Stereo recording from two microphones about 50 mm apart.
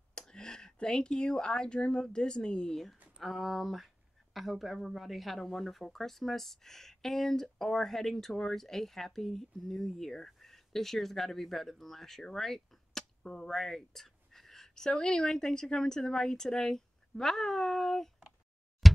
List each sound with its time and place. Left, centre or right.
0.3 s speech: centre
2.7 s speech: centre
14.9 s a woman's voice: centre